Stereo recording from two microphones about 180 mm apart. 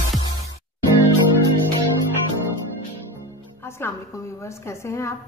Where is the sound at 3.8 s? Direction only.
15° left (ahead or behind).